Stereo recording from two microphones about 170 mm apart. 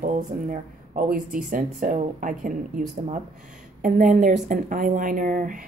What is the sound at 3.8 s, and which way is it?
A woman's voice, 50° right (ahead or behind).